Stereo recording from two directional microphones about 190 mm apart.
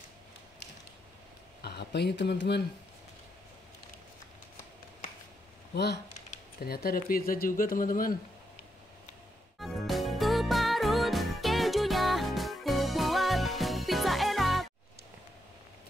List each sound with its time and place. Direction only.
1.6 s speech: 60° left (ahead or behind)
6.3 s speech: 55° left (ahead or behind)
9.6 s music: centre (ahead or behind)